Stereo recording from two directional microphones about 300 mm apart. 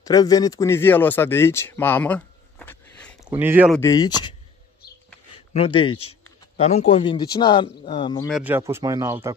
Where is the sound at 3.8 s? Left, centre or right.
Centre.